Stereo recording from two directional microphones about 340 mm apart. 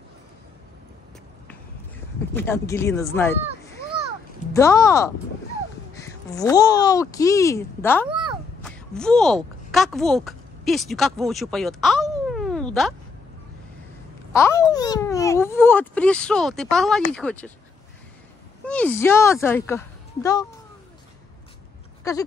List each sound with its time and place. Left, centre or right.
2.3 s speech: centre
4.6 s speech: centre
14.3 s a child's voice: centre
18.7 s speech: centre
22.0 s speech: centre